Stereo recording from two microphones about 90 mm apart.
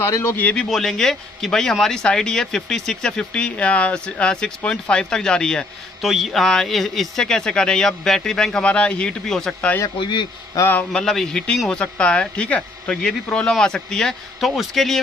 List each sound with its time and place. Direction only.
0.0 s speech: 30° left (ahead or behind)
0.4 s speech: 15° left (ahead or behind)
0.7 s speech: 5° left (ahead or behind)
9.9 s a man's voice: 60° left (ahead or behind)
10.6 s speech: 40° left (ahead or behind)
10.9 s speech: 5° left (ahead or behind)